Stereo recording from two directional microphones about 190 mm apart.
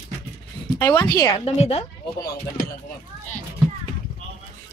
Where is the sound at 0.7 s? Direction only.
15° left (ahead or behind).